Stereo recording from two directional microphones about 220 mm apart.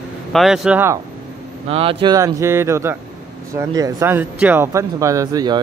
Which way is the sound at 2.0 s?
15° right (ahead or behind).